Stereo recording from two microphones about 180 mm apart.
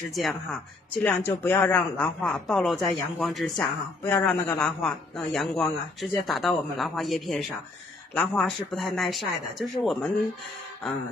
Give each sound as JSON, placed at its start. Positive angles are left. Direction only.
{"t": 0.1, "sound": "a man's voice", "side_deg": 0}
{"t": 4.0, "sound": "a man's voice", "side_deg": 10}